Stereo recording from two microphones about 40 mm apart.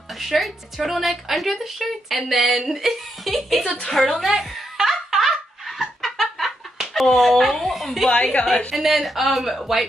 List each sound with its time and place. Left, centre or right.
0.2 s a woman's voice: centre
4.3 s a sound: centre
5.9 s fowl: centre
6.9 s a woman's voice: centre
8.1 s a woman's voice: left
8.7 s a woman's voice: centre